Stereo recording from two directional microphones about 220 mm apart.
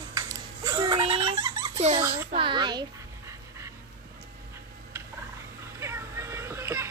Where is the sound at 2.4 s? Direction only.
20° right (ahead or behind).